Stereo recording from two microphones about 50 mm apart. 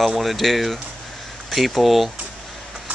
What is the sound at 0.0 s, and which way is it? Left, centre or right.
Speech, centre.